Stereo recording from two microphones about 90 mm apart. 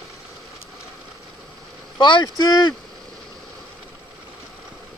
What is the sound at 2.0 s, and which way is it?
Speech, 60° left (ahead or behind).